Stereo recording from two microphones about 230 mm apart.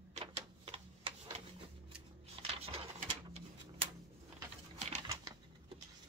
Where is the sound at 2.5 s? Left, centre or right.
Right.